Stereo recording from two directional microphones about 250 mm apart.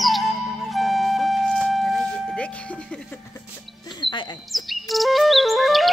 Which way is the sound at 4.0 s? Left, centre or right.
Centre.